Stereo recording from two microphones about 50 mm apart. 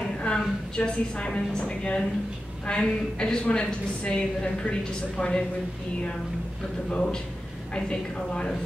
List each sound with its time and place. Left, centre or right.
0.2 s a woman's voice: centre
6.9 s speech: centre